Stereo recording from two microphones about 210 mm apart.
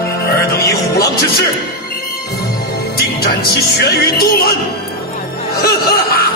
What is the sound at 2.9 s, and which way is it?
Music, 45° left (ahead or behind).